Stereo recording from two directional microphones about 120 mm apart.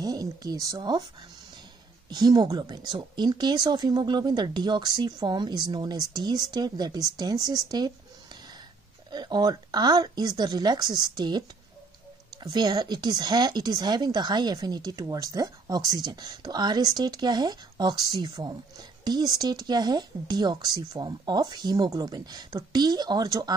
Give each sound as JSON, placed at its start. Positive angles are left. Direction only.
{"t": 0.0, "sound": "speech", "side_deg": -30}
{"t": 2.0, "sound": "speech", "side_deg": -35}
{"t": 9.1, "sound": "speech", "side_deg": -35}
{"t": 12.4, "sound": "speech", "side_deg": -35}